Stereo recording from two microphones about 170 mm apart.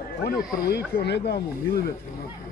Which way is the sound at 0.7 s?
75° left (ahead or behind).